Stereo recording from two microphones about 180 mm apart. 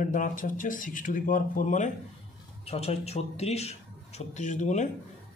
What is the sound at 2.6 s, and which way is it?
Speech, 35° left (ahead or behind).